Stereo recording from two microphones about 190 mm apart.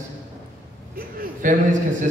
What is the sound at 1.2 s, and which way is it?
Speech, 45° right (ahead or behind).